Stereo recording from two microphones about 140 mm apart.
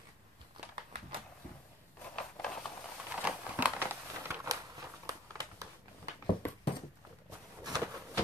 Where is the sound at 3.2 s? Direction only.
10° right (ahead or behind).